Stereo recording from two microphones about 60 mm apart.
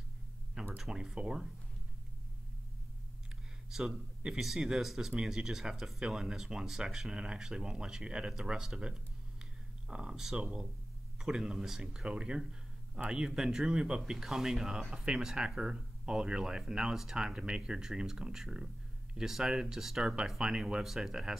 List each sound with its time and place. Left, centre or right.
0.7 s speech: centre
3.7 s a man's voice: centre